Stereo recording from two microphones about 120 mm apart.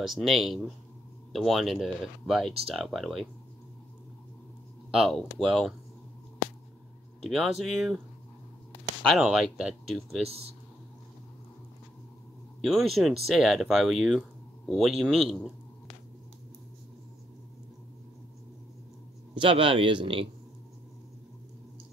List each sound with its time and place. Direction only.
0.0 s speech: centre (ahead or behind)
4.9 s speech: 5° right (ahead or behind)
6.4 s a sound: 90° left
7.2 s speech: centre (ahead or behind)
9.2 s speech: 5° right (ahead or behind)
10.2 s speech: 55° right (ahead or behind)
12.6 s speech: centre (ahead or behind)
19.3 s speech: 45° right (ahead or behind)